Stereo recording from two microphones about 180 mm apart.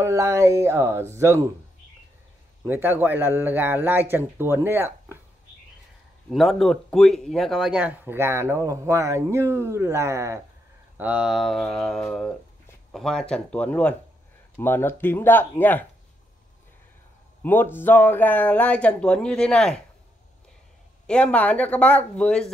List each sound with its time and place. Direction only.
0.0 s speech: 15° right (ahead or behind)
2.6 s speech: 10° right (ahead or behind)
6.3 s speech: centre (ahead or behind)
17.4 s speech: 10° left (ahead or behind)
21.1 s speech: 5° left (ahead or behind)